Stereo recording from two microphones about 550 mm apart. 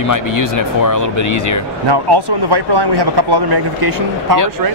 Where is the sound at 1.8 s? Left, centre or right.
Right.